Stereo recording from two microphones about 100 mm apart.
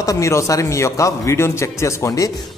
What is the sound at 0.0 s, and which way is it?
Speech, 30° left (ahead or behind).